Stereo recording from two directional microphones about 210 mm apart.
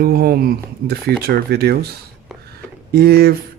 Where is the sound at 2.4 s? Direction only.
50° right (ahead or behind).